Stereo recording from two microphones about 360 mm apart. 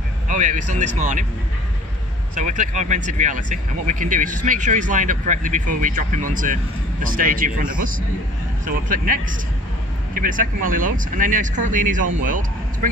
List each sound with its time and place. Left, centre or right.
0.3 s speech: right
2.3 s speech: centre